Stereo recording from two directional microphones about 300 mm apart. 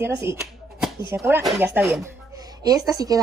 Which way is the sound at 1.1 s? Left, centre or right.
Centre.